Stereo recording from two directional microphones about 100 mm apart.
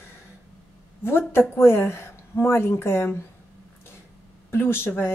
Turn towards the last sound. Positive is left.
turn(degrees=25)  # may be behind; listen again after turning